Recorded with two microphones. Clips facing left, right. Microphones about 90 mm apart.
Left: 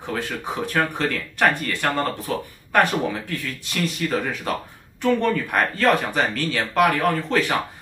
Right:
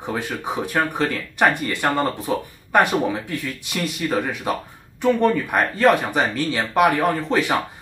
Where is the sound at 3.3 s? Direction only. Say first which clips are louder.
Right 1 dB; 15° right (ahead or behind).